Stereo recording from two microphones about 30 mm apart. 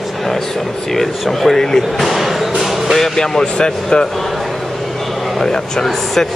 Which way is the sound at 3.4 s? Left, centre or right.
Left.